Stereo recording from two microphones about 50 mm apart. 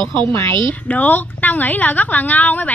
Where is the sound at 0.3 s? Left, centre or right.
Left.